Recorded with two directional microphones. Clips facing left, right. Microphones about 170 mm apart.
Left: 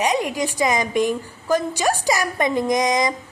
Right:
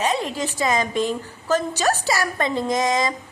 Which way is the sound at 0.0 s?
15° left (ahead or behind).